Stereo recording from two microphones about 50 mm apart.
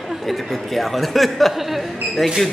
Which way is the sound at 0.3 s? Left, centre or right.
Centre.